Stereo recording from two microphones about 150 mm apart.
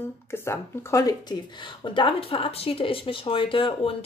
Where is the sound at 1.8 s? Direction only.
35° left (ahead or behind).